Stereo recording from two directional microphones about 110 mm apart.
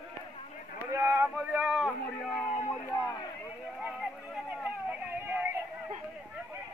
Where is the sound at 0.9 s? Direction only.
25° right (ahead or behind).